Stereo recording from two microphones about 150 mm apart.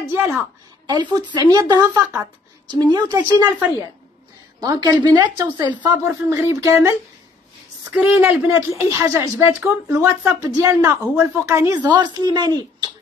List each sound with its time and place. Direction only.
0.4 s a woman's voice: 25° right (ahead or behind)
4.6 s a woman's voice: 25° right (ahead or behind)